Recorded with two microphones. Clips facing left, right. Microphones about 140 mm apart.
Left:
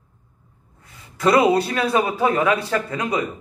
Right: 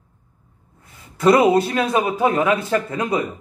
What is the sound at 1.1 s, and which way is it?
A man's voice, 20° right (ahead or behind).